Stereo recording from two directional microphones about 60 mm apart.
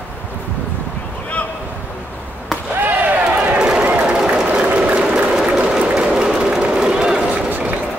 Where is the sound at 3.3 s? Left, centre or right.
Right.